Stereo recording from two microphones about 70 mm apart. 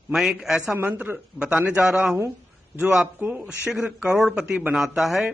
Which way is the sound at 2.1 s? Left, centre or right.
Right.